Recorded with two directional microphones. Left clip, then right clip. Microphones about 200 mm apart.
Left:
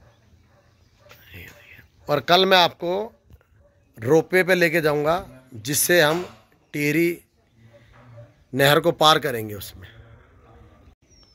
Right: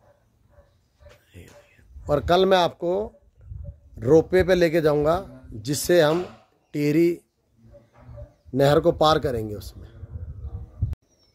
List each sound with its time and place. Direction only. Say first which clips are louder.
1.0 s whispering: left 6 dB; centre (ahead or behind)
3.9 s a man's voice: right 1 dB; centre (ahead or behind)
8.5 s a man's voice: left 1 dB; 5° right (ahead or behind)